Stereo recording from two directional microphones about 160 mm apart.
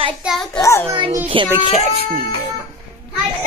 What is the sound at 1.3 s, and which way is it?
Child singing, 35° right (ahead or behind).